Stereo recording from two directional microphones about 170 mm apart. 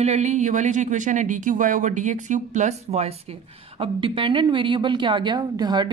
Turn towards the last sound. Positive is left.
turn(degrees=-25)  # may be behind; listen again after turning